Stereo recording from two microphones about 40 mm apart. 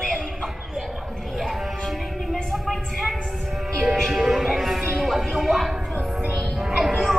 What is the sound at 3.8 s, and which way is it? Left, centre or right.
Music, centre.